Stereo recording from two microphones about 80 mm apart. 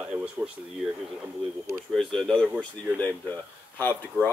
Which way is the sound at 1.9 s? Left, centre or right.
Centre.